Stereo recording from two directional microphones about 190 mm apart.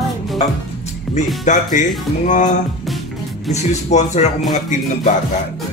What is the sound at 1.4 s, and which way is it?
Speech, 40° left (ahead or behind).